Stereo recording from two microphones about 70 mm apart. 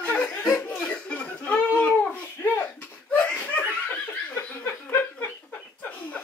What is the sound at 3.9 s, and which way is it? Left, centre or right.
Chuckle, left.